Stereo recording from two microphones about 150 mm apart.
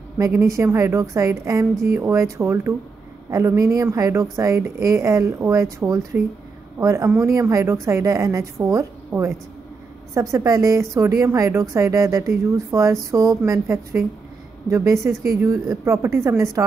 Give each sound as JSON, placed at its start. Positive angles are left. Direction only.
{"t": 0.3, "sound": "a woman's voice", "side_deg": -20}